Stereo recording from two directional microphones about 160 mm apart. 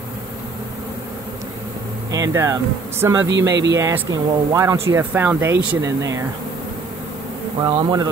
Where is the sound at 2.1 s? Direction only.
20° right (ahead or behind).